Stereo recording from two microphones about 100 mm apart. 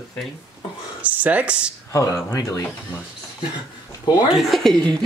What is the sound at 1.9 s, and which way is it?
Speech, 30° left (ahead or behind).